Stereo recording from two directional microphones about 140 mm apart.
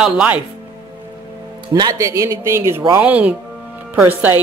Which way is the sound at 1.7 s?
25° right (ahead or behind).